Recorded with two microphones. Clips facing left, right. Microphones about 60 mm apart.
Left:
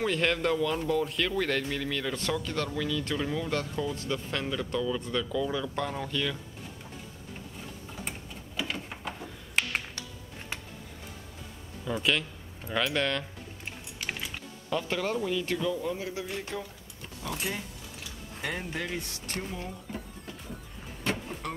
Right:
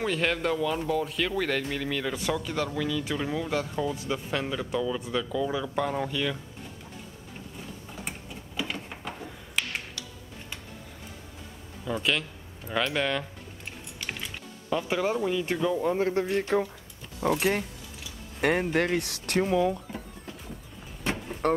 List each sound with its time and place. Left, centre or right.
0.0 s speech: centre
8.5 s a sound: centre
11.8 s speech: centre
13.9 s music: centre
14.7 s speech: centre
15.8 s speech: right
21.4 s speech: right